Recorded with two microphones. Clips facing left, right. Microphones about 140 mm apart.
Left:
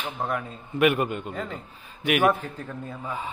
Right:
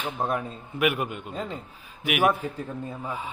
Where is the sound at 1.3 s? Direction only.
20° right (ahead or behind).